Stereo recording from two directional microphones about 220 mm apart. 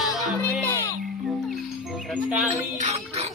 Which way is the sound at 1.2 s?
Centre (ahead or behind).